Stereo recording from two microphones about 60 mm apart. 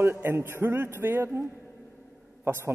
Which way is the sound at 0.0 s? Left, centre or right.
Right.